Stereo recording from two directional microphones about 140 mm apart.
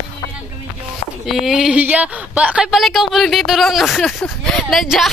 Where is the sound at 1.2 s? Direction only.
Centre (ahead or behind).